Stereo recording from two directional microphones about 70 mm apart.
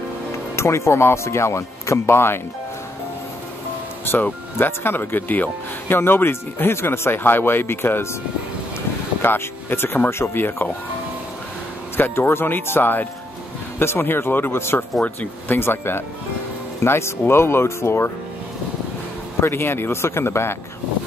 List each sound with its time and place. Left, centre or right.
0.6 s speech: left
4.0 s speech: left
9.2 s speech: left
12.0 s speech: left
19.4 s speech: left